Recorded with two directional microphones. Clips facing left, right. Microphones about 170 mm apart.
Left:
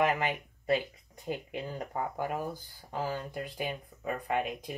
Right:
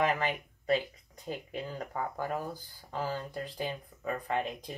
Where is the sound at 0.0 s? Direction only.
10° left (ahead or behind).